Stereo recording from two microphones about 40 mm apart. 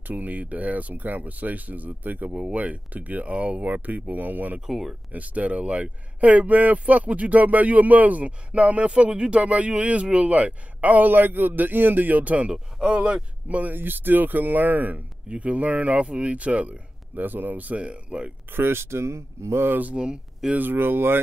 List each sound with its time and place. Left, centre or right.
0.0 s speech: right
4.6 s speech: centre
5.1 s speech: right
9.4 s speech: right
12.7 s speech: right
13.5 s speech: right
13.7 s speech: right
15.2 s speech: right
16.0 s speech: right
17.1 s speech: right
17.7 s speech: right
18.5 s speech: right
19.5 s speech: right
20.5 s speech: right